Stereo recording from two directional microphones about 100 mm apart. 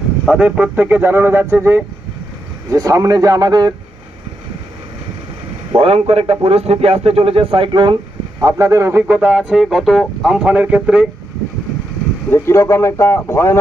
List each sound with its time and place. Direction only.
0.2 s a man's voice: 5° right (ahead or behind); by 3.7 s 45° right (ahead or behind)
5.8 s a man's voice: 85° right; by 8.0 s 55° right (ahead or behind)
8.4 s a man's voice: 35° right (ahead or behind)
9.0 s speech: 15° right (ahead or behind)
12.3 s speech: 25° left (ahead or behind)